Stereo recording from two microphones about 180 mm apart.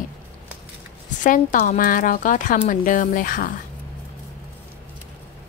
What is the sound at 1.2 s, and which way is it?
A woman's voice, 50° left (ahead or behind).